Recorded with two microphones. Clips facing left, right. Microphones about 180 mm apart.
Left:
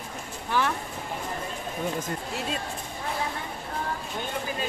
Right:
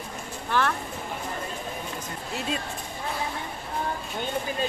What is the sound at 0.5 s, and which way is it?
Speech, 10° left (ahead or behind).